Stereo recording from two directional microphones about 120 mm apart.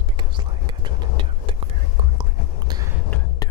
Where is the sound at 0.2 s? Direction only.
40° right (ahead or behind).